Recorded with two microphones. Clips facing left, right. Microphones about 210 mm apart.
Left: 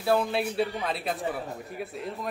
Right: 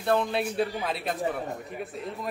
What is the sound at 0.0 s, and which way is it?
A man's voice, 5° left (ahead or behind).